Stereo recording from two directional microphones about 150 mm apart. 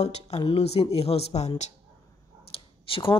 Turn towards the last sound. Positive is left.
turn(degrees=35)  # may be behind; listen again after turning